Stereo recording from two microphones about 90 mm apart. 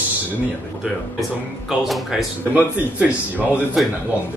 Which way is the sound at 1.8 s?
Centre (ahead or behind).